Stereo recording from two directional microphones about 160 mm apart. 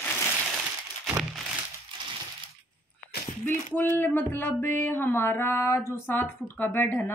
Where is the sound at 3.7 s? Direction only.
15° left (ahead or behind).